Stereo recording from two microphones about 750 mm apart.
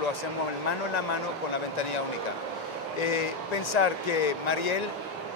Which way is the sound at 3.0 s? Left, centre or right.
Left.